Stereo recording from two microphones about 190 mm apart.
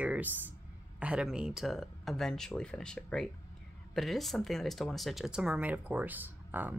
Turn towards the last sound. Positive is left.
turn(degrees=-10)  # may be behind; listen again after turning